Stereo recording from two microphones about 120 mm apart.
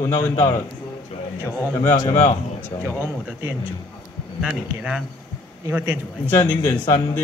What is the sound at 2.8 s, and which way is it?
Speech, 20° right (ahead or behind).